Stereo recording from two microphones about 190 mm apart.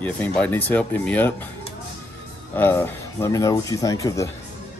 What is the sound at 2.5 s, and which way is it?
Speech, 10° left (ahead or behind).